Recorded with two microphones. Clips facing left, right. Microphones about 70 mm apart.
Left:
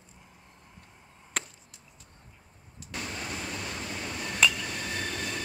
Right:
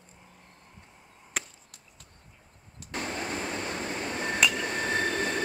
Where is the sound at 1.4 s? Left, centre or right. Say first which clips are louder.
Even; centre.